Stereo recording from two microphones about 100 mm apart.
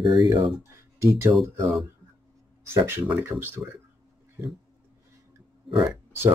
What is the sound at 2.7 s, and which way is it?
Speech, 25° right (ahead or behind).